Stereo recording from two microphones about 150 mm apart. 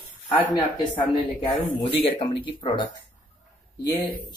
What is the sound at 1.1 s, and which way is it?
Speech, 30° left (ahead or behind).